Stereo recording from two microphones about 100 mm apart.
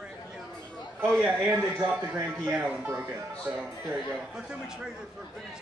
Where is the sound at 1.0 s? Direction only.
Centre (ahead or behind).